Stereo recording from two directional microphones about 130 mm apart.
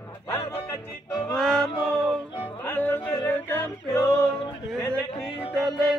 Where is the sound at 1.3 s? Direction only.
5° left (ahead or behind).